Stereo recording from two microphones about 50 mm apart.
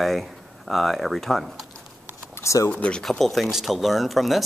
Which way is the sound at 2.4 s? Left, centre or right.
Left.